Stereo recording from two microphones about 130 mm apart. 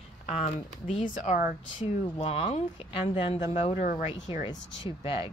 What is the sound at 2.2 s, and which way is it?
Speech, 50° left (ahead or behind).